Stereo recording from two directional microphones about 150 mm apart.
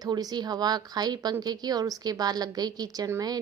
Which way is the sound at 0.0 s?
25° right (ahead or behind).